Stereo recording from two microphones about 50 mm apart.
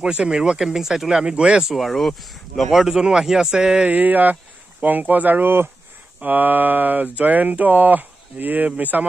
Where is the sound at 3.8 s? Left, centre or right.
Right.